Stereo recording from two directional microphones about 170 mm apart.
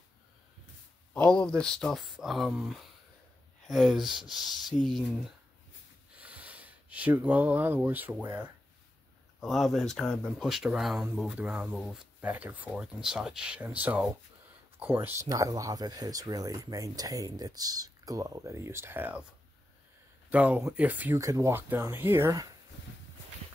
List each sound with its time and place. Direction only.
1.1 s speech: 5° left (ahead or behind); by 8.5 s 10° right (ahead or behind)
9.4 s speech: centre (ahead or behind)
20.2 s speech: 10° right (ahead or behind)